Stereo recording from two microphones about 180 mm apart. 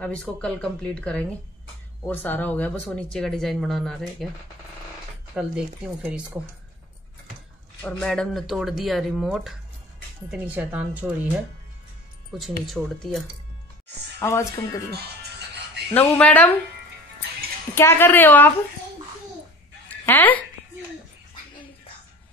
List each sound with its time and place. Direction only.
0.0 s speech: 5° left (ahead or behind)
5.3 s speech: 5° right (ahead or behind)
7.8 s speech: 5° left (ahead or behind)
14.2 s a woman's voice: 15° left (ahead or behind)
14.9 s music: 65° right (ahead or behind)
15.9 s a woman's voice: 10° left (ahead or behind)
17.7 s a woman's voice: 15° left (ahead or behind)
19.9 s fowl: 10° left (ahead or behind)